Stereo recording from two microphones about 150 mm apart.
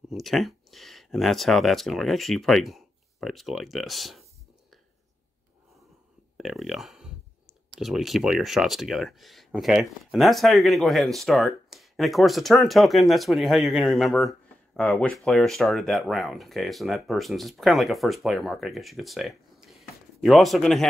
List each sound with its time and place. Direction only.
0.1 s speech: centre (ahead or behind)
6.3 s speech: centre (ahead or behind)